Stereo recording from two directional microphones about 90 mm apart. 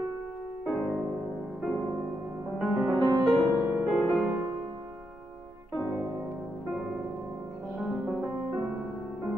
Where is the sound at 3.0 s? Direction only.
50° right (ahead or behind).